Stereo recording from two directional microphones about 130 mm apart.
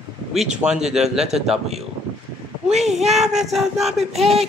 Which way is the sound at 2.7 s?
60° right (ahead or behind).